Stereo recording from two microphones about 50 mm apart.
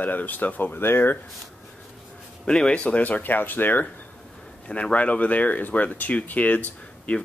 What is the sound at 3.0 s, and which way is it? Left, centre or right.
Speech, left.